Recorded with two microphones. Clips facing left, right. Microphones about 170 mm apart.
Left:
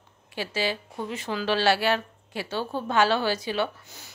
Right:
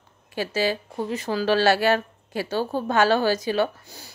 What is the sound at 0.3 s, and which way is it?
Speech, 45° right (ahead or behind).